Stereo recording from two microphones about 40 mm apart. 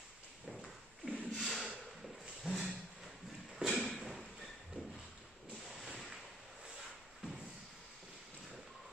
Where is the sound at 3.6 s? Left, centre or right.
Centre.